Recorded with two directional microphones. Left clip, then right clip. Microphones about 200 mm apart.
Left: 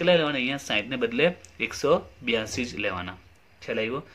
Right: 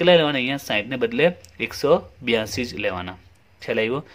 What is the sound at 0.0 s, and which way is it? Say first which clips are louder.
Speech: right 5 dB; 40° right (ahead or behind).